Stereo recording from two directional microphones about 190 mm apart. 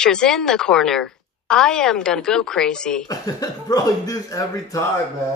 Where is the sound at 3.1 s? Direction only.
20° left (ahead or behind).